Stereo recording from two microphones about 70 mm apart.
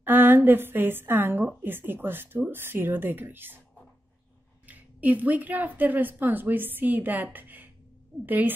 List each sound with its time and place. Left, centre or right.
0.0 s a woman's voice: right
4.6 s a woman's voice: right